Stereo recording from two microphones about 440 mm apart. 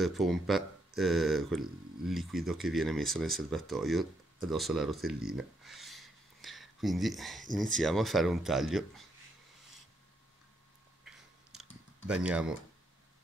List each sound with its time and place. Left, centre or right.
0.0 s speech: centre
5.3 s a sound: centre
7.5 s speech: centre
11.1 s chewing: centre
11.5 s a sound: centre
12.1 s speech: centre